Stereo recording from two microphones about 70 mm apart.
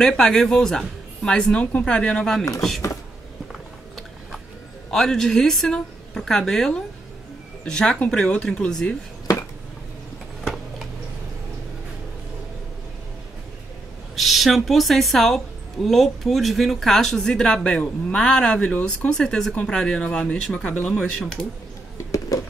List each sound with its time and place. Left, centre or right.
0.0 s speech: centre
4.9 s a woman's voice: centre
14.1 s a woman's voice: centre
20.9 s a woman's voice: centre
21.9 s a sound: left